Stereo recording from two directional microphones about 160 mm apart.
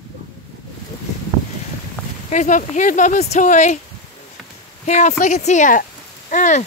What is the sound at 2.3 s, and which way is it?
Speech, 55° left (ahead or behind).